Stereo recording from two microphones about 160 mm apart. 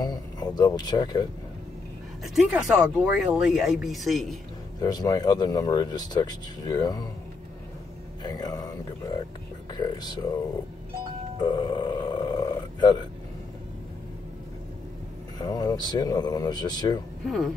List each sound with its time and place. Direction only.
0.0 s speech: 25° left (ahead or behind)
2.2 s speech: centre (ahead or behind)
4.7 s speech: 25° left (ahead or behind)
8.2 s speech: 25° left (ahead or behind)
11.4 s speech: 25° left (ahead or behind)
15.3 s speech: 25° left (ahead or behind)